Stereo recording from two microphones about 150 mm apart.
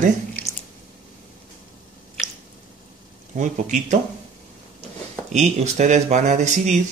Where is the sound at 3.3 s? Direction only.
55° right (ahead or behind).